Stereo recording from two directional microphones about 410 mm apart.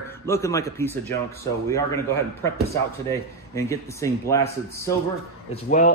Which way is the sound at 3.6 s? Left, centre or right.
Centre.